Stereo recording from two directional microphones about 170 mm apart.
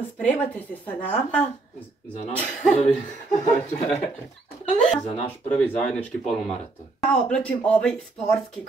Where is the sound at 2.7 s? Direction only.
40° left (ahead or behind).